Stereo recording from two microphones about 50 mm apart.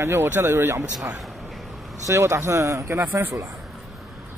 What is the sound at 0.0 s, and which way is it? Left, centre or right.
Speech, right.